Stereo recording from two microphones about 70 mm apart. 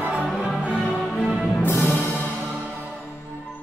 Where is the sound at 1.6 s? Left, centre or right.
Left.